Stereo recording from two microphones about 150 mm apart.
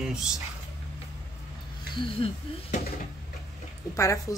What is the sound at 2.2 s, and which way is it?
Speech, 35° left (ahead or behind).